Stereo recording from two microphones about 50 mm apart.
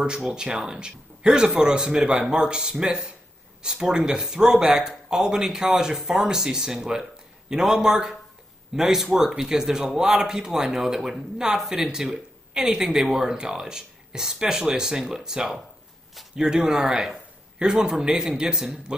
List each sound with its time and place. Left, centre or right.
0.0 s a man's voice: centre